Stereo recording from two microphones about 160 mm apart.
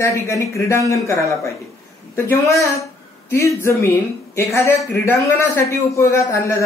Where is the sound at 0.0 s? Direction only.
20° left (ahead or behind).